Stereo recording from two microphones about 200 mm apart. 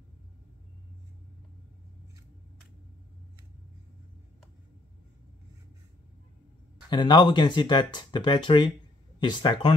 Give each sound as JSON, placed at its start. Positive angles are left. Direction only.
{"t": 6.9, "sound": "speech", "side_deg": 20}